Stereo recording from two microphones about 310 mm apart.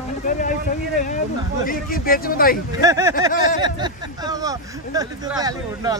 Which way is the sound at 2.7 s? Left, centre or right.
Centre.